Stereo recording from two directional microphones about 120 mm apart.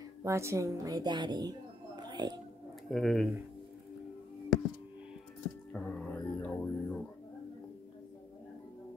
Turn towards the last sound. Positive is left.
turn(degrees=10)  # may be behind; listen again after turning